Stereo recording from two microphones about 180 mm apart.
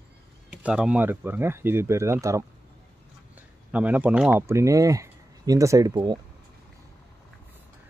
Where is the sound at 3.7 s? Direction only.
10° right (ahead or behind); by 6.2 s 25° right (ahead or behind).